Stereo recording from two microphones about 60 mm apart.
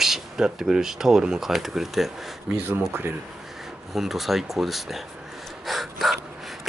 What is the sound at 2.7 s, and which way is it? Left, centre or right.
Speech, right.